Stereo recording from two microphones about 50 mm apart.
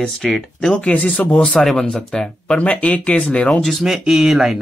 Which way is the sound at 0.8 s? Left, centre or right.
Left.